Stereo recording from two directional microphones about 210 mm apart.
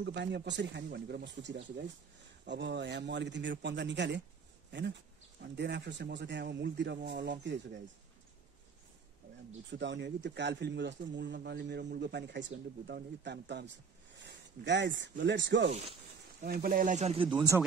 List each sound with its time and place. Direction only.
0.0 s a man's voice: 55° right (ahead or behind)
9.7 s speech: 55° right (ahead or behind)
16.4 s speech: 45° right (ahead or behind); by 17.4 s 25° right (ahead or behind)